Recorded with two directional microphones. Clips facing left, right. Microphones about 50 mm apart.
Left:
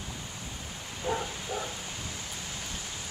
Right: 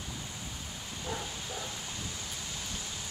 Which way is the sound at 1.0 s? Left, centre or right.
Left.